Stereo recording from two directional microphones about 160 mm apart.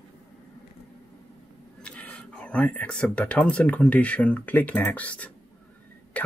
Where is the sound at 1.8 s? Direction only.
10° left (ahead or behind).